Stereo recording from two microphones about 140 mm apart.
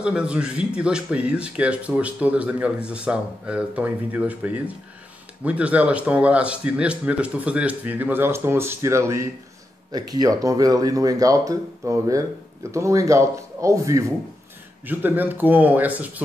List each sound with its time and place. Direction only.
0.0 s speech: 10° right (ahead or behind)